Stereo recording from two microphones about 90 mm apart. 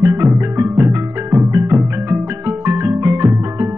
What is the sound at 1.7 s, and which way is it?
Music, 30° right (ahead or behind).